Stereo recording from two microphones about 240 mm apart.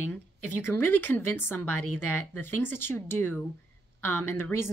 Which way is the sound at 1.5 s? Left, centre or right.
Centre.